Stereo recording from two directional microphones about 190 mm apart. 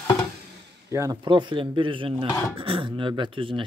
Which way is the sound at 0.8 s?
15° right (ahead or behind).